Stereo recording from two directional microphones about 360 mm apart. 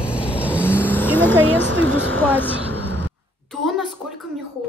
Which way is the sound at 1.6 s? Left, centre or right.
Right.